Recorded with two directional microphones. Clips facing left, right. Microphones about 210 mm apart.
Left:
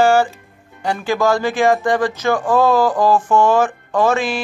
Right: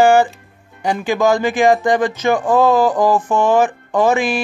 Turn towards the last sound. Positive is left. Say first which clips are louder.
# right 2 dB
turn(degrees=-15)  # may be behind; listen again after turning